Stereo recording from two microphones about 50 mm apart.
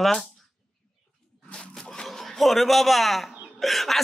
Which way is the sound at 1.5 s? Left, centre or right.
Centre.